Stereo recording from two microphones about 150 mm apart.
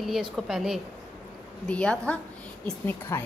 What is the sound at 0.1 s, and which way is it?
A woman's voice, centre (ahead or behind).